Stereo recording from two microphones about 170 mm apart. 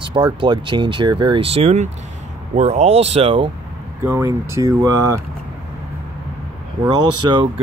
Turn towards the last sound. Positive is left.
turn(degrees=-25)  # may be behind; listen again after turning